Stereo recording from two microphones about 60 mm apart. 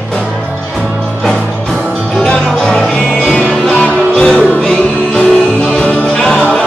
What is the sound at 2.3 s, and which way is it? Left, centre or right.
Music, centre.